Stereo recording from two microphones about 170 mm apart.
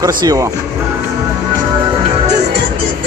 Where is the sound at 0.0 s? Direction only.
20° right (ahead or behind).